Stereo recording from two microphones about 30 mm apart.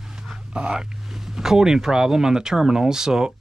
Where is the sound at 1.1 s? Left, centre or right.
Centre.